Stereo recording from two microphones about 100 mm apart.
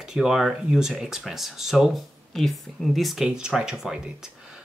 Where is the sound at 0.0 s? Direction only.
5° right (ahead or behind).